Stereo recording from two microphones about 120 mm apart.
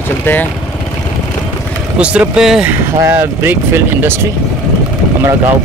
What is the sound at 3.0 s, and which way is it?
Speech, 20° right (ahead or behind).